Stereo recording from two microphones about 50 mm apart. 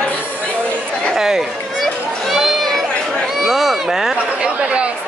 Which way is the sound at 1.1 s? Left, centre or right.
Centre.